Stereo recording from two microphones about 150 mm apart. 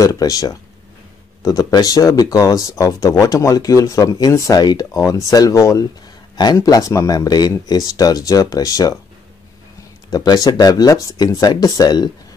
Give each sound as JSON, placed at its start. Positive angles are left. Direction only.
{"t": 0.0, "sound": "speech", "side_deg": 25}
{"t": 10.1, "sound": "speech", "side_deg": 25}